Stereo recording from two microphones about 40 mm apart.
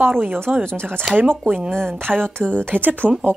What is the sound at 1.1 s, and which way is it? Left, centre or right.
Speech, right.